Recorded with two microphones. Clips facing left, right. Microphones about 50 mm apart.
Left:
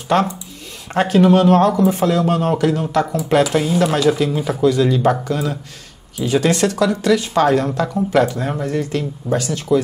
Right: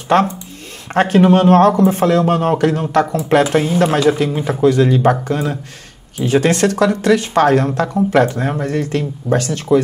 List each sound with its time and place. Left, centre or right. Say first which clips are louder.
0.1 s speech: right 3 dB; right